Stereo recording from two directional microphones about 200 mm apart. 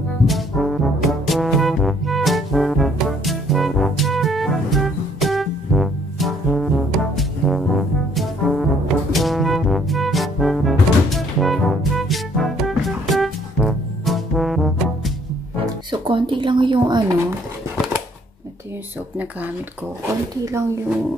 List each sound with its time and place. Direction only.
0.3 s brass instrument: centre (ahead or behind)
9.1 s music: centre (ahead or behind)
15.6 s music: 25° right (ahead or behind)
20.4 s speech: 15° right (ahead or behind)